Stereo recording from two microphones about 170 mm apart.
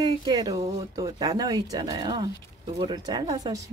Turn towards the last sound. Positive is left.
turn(degrees=-20)  # may be behind; listen again after turning